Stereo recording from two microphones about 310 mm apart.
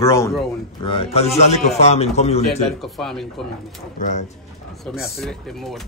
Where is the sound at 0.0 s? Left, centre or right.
Centre.